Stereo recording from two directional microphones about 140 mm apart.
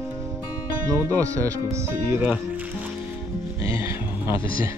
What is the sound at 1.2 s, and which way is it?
Speech, 20° right (ahead or behind).